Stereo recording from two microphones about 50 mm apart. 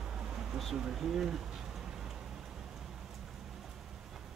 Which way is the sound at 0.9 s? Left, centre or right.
Centre.